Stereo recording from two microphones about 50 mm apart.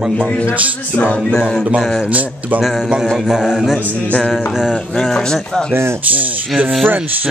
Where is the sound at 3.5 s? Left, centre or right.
Centre.